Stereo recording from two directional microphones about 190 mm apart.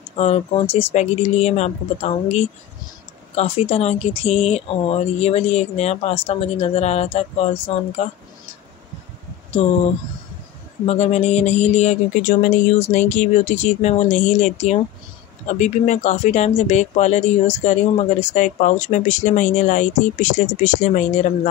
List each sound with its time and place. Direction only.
0.2 s speech: 30° left (ahead or behind)
10.9 s speech: 35° left (ahead or behind)